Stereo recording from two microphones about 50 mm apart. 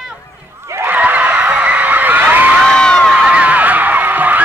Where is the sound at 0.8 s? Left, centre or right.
Right.